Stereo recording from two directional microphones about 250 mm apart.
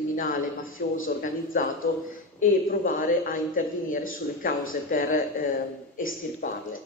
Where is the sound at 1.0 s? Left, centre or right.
Left.